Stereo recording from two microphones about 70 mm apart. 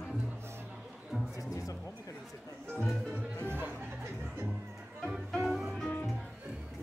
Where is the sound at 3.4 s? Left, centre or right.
Right.